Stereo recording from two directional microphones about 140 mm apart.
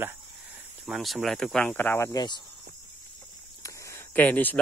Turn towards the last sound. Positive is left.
turn(degrees=10)  # may be behind; listen again after turning